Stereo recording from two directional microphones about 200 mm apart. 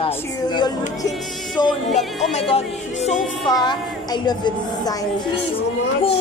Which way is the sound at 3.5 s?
20° left (ahead or behind).